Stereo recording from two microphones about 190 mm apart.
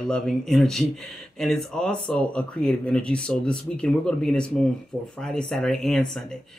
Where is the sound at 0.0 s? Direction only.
5° left (ahead or behind).